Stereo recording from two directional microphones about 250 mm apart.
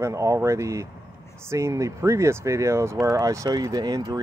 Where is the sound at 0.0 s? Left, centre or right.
Centre.